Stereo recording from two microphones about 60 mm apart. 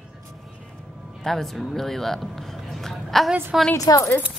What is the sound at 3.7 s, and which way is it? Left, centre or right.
Speech, left.